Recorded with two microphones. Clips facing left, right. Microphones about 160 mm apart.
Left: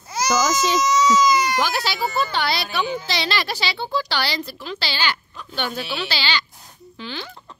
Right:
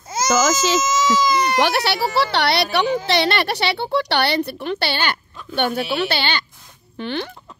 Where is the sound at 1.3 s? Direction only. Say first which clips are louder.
Right 2 dB; 65° right (ahead or behind).